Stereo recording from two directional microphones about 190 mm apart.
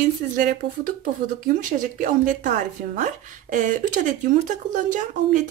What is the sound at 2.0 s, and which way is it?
A woman's voice, 45° right (ahead or behind).